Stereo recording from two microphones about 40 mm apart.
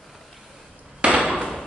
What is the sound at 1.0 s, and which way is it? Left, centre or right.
Hammer, right.